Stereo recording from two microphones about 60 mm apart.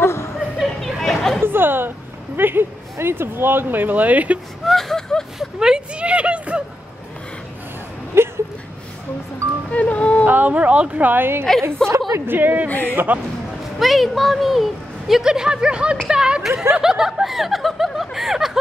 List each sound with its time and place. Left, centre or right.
0.0 s a sound: left
0.6 s a sound: centre
1.4 s a sound: right
2.3 s speech: right
4.6 s speech: centre
5.6 s speech: centre
8.2 s a sound: right
9.7 s speech: left
10.2 s speech: right
11.6 s a woman's voice: right
12.3 s speech: right
12.6 s speech: left
12.9 s speech: right
13.7 s speech: centre